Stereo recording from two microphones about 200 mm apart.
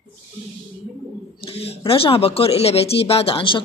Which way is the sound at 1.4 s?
30° left (ahead or behind).